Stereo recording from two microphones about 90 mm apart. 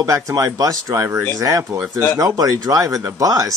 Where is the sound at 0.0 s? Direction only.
40° right (ahead or behind).